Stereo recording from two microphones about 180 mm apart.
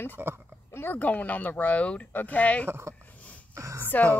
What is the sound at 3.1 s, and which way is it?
Wheeze, 10° left (ahead or behind).